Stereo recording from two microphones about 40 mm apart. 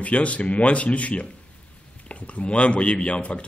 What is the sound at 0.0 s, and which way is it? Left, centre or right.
A man's voice, left.